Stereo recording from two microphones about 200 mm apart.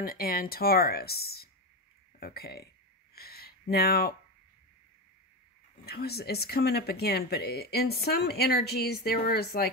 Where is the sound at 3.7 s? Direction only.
50° left (ahead or behind).